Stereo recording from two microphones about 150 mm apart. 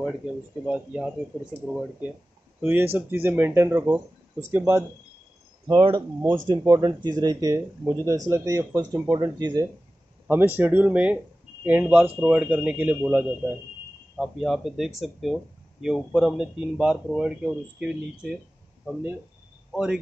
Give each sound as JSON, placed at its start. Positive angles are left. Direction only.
{"t": 0.7, "sound": "speech", "side_deg": -5}
{"t": 5.7, "sound": "speech", "side_deg": -30}
{"t": 10.2, "sound": "speech", "side_deg": -15}
{"t": 14.1, "sound": "speech", "side_deg": 0}
{"t": 19.7, "sound": "speech", "side_deg": -5}